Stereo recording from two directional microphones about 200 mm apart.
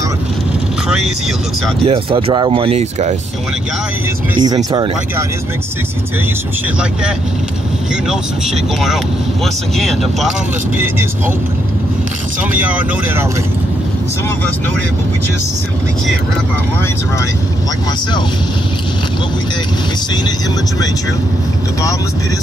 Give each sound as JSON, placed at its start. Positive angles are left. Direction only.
{"t": 0.8, "sound": "vehicle", "side_deg": -5}
{"t": 1.9, "sound": "speech", "side_deg": -25}
{"t": 4.4, "sound": "speech", "side_deg": -20}
{"t": 8.8, "sound": "speech", "side_deg": 0}
{"t": 10.8, "sound": "speech", "side_deg": -10}
{"t": 12.5, "sound": "speech", "side_deg": -10}